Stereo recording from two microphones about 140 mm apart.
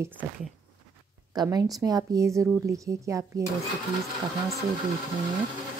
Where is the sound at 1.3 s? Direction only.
30° right (ahead or behind).